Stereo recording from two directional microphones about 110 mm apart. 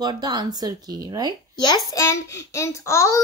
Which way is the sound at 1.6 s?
35° left (ahead or behind).